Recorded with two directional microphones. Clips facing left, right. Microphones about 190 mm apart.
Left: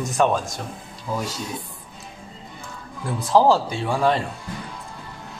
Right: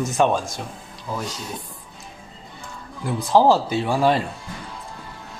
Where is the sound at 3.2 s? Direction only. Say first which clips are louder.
Right 1 dB; centre (ahead or behind).